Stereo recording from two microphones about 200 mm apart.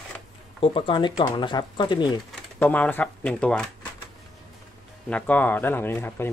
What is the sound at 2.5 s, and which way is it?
Speech, 10° left (ahead or behind).